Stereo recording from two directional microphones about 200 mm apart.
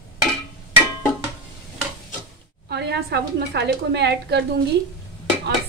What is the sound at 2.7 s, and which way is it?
A woman's voice, 55° right (ahead or behind).